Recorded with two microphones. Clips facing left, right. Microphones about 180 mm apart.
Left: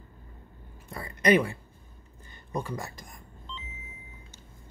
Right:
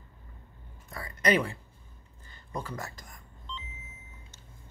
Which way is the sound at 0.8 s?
25° left (ahead or behind).